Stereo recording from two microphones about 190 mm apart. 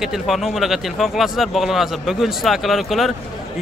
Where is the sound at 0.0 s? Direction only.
Centre (ahead or behind).